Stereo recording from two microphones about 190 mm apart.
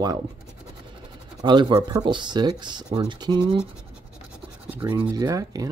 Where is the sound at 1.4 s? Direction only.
25° right (ahead or behind).